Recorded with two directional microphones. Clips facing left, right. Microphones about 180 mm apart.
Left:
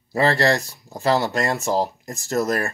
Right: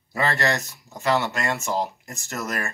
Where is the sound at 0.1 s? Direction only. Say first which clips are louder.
Left 5 dB; 35° left (ahead or behind).